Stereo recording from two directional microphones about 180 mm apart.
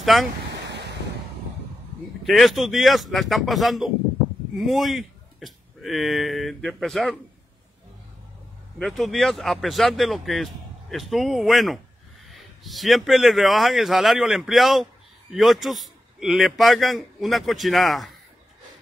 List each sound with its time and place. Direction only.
0.0 s speech: centre (ahead or behind)
0.7 s waves: 70° right (ahead or behind)
2.2 s speech: centre (ahead or behind)
8.7 s speech: centre (ahead or behind)